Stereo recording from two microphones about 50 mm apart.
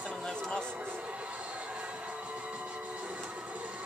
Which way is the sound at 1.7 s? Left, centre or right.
Right.